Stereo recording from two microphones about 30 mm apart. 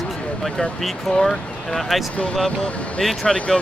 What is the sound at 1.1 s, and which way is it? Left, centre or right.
Speech, left.